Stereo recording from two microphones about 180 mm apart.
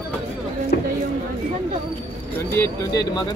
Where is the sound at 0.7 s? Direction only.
60° left (ahead or behind).